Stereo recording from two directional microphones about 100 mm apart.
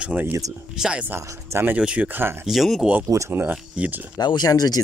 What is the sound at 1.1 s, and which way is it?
Speech, 25° right (ahead or behind).